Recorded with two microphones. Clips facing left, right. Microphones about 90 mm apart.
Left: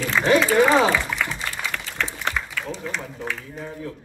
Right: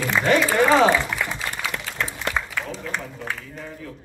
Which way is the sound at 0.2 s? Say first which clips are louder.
Left 2 dB; centre (ahead or behind).